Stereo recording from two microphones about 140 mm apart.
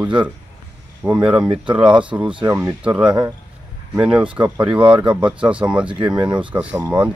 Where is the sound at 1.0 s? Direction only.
10° right (ahead or behind).